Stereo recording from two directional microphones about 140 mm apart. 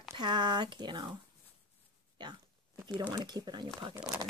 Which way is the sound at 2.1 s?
30° right (ahead or behind).